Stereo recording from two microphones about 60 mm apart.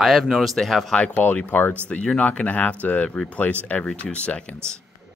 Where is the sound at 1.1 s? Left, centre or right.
Left.